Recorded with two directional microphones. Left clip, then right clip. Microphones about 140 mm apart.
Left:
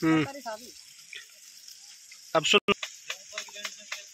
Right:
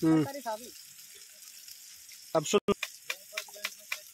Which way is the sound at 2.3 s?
5° right (ahead or behind).